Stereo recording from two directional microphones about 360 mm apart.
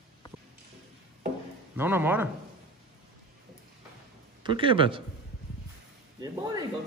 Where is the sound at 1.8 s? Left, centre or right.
Centre.